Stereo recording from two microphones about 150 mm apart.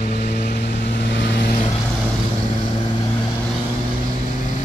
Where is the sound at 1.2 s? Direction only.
75° left (ahead or behind).